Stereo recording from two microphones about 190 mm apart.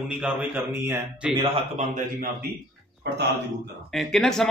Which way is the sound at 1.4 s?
40° right (ahead or behind).